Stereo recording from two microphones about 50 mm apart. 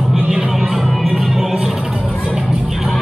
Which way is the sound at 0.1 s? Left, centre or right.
Centre.